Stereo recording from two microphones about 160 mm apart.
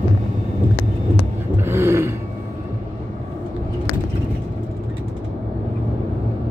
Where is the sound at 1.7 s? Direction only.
15° right (ahead or behind).